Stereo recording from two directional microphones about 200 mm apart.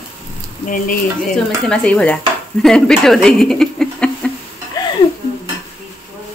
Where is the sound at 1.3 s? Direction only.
5° left (ahead or behind).